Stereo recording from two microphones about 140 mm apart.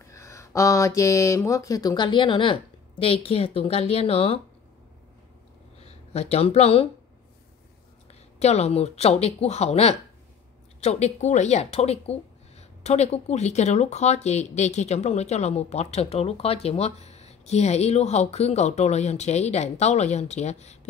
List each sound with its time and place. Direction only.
0.0 s speech: 20° left (ahead or behind); by 4.4 s 40° left (ahead or behind)
5.9 s speech: 50° left (ahead or behind)
8.1 s a woman's voice: 50° left (ahead or behind)